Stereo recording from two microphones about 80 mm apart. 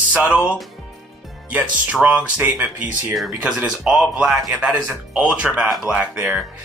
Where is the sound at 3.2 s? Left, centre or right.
Centre.